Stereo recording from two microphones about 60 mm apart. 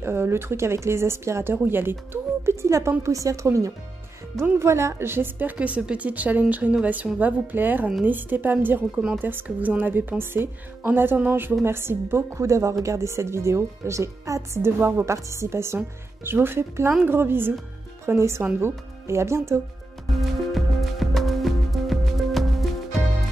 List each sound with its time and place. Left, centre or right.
0.0 s a woman's voice: right
2.4 s a woman's voice: right
4.4 s a woman's voice: right
5.6 s a woman's voice: right
14.6 s a woman's voice: right
18.0 s a woman's voice: right
20.2 s music: centre